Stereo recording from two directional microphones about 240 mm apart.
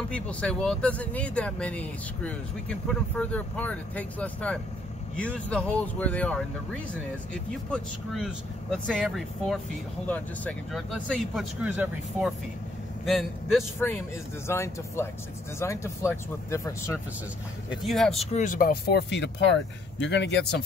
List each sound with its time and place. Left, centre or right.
0.1 s speech: centre
17.8 s speech: centre
18.3 s speech: left